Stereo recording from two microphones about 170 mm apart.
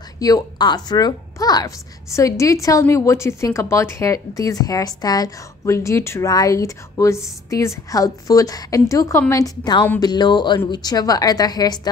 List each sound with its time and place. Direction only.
0.2 s a woman's voice: 25° left (ahead or behind)